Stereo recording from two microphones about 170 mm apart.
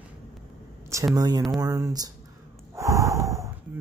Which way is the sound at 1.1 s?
20° right (ahead or behind).